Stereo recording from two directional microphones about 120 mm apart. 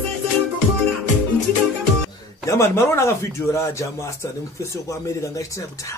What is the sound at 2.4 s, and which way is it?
Speech, 25° left (ahead or behind).